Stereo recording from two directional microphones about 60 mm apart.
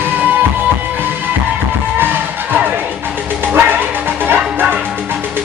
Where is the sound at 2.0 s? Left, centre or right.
Right.